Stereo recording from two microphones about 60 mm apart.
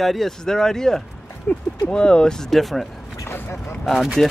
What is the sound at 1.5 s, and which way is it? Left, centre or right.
Speech, left.